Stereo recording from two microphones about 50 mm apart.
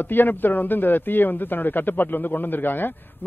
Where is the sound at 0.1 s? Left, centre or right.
Left.